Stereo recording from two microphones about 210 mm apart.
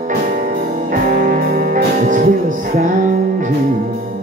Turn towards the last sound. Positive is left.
turn(degrees=-40)  # may be behind; listen again after turning